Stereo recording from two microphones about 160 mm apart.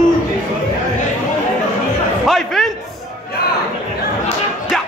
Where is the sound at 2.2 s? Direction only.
Centre (ahead or behind).